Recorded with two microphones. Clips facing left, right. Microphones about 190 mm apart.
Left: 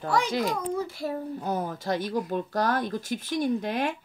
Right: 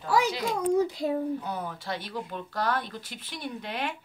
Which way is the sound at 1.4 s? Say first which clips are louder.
Left 5 dB; 45° left (ahead or behind).